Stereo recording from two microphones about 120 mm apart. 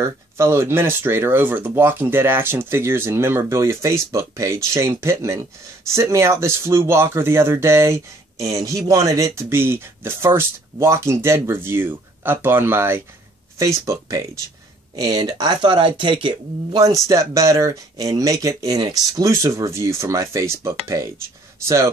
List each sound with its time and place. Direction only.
0.0 s speech: 20° right (ahead or behind)